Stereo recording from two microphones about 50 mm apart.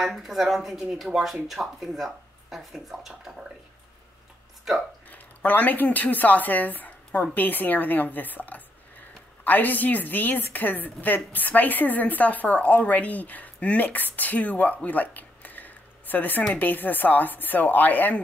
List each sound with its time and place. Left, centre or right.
0.0 s speech: centre
5.1 s a woman's voice: left